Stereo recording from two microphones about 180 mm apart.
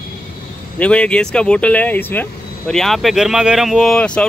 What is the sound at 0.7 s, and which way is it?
Speech, 5° left (ahead or behind).